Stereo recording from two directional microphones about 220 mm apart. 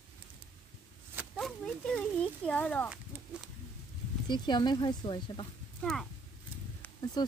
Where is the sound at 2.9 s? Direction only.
5° right (ahead or behind).